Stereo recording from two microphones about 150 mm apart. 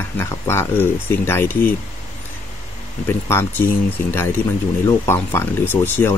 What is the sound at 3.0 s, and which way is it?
Speech, 15° left (ahead or behind).